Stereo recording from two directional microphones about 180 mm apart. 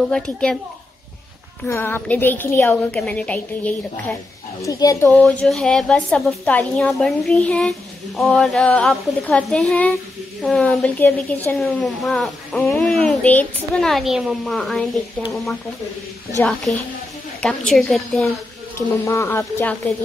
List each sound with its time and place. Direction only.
0.1 s a woman's voice: 5° left (ahead or behind)
1.7 s a woman's voice: 10° left (ahead or behind)
4.6 s a woman's voice: 20° left (ahead or behind)
5.1 s a woman's voice: 5° left (ahead or behind)
16.4 s a woman's voice: 5° left (ahead or behind)
18.8 s a woman's voice: 15° left (ahead or behind)